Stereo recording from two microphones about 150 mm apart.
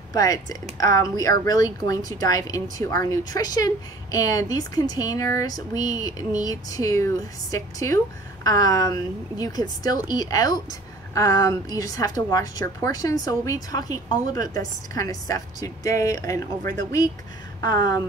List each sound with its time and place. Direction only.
0.1 s speech: 25° left (ahead or behind)